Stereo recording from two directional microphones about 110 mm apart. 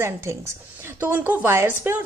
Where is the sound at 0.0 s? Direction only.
25° right (ahead or behind).